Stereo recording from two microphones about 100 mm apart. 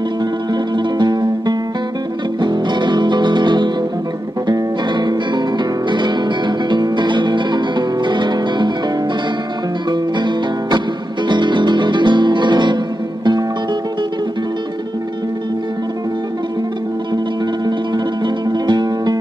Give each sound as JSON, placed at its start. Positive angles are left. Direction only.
{"t": 0.7, "sound": "music", "side_deg": -45}
{"t": 9.8, "sound": "music", "side_deg": -50}
{"t": 17.6, "sound": "music", "side_deg": -45}